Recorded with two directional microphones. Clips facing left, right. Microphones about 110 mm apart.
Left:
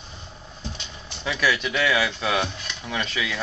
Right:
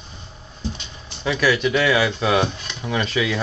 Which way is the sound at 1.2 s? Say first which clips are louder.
Right 5 dB; 5° right (ahead or behind).